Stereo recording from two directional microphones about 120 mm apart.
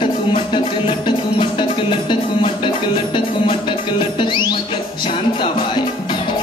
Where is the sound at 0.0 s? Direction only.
45° left (ahead or behind).